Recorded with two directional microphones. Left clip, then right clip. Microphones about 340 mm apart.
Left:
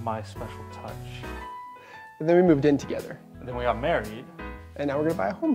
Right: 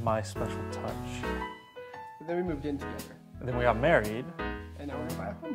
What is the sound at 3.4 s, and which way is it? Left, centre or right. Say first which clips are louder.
Speech: even; right.